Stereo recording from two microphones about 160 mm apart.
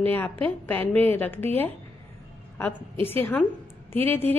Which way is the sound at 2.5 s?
15° left (ahead or behind).